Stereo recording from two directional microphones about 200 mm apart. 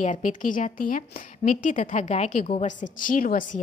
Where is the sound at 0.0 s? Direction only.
40° left (ahead or behind).